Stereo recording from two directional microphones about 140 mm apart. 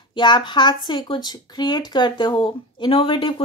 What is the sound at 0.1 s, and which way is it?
A woman's voice, 35° left (ahead or behind).